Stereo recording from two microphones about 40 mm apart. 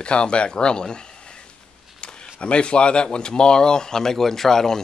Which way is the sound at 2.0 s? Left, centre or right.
Centre.